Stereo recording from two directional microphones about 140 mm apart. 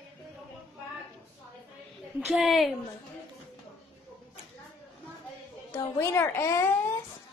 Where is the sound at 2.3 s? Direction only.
5° right (ahead or behind).